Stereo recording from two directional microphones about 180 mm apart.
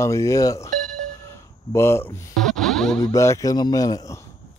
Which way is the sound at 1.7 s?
15° left (ahead or behind).